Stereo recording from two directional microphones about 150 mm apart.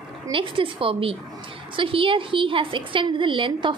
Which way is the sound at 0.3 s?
35° right (ahead or behind).